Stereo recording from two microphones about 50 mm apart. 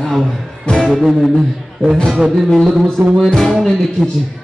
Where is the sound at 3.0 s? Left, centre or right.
Right.